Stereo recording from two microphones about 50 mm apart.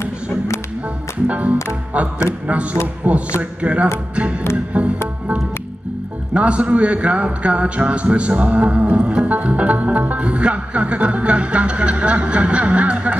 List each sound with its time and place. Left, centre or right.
1.2 s a man's voice: right
3.1 s music: right
3.6 s a man's voice: right
6.3 s a man's voice: right